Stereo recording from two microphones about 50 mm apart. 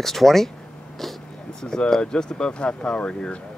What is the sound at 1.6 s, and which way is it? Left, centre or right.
Speech, centre.